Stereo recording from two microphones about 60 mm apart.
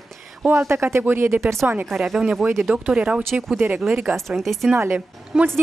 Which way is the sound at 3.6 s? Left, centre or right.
Right.